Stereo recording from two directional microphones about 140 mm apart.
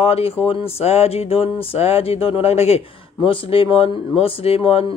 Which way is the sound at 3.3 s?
40° left (ahead or behind).